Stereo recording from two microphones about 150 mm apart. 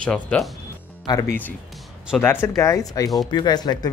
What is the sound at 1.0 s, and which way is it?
Speech, 20° left (ahead or behind).